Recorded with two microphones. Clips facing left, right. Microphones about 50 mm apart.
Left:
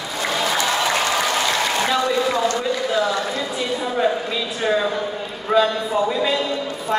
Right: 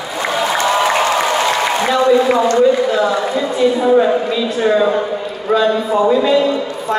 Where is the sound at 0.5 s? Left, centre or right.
Right.